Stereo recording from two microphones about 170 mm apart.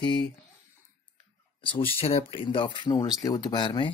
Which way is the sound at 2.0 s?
35° left (ahead or behind).